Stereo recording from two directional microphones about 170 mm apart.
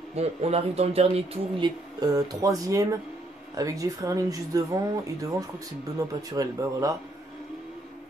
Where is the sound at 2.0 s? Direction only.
20° right (ahead or behind).